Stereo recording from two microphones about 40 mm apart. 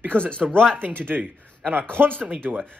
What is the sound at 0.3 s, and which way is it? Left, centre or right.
Speech, left.